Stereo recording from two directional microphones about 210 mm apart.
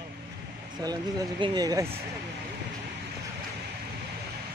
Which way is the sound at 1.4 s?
20° right (ahead or behind).